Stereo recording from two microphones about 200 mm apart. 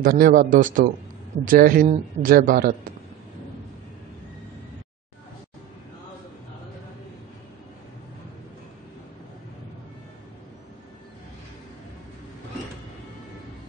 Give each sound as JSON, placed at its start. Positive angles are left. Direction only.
{"t": 0.0, "sound": "speech", "side_deg": -45}